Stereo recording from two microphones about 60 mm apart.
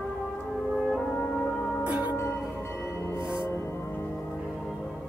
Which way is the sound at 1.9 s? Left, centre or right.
Right.